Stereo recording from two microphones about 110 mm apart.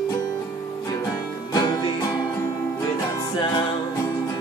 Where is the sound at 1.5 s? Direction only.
40° left (ahead or behind).